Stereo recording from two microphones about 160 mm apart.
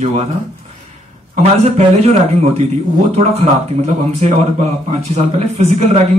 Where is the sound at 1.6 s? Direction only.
40° right (ahead or behind).